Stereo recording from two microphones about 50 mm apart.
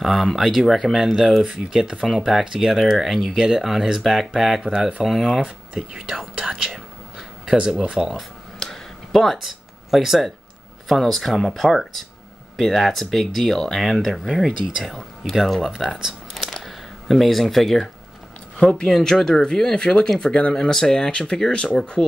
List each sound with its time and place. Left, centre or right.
0.0 s speech: centre
2.1 s speech: centre
7.2 s a sound: centre
8.1 s a sound: centre
10.9 s speech: centre
16.0 s crumpling: centre
16.6 s speech: centre
18.6 s speech: centre